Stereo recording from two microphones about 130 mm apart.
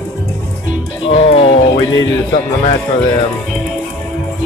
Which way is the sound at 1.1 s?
50° left (ahead or behind).